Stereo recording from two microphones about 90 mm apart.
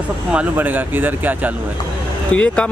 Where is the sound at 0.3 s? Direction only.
15° right (ahead or behind).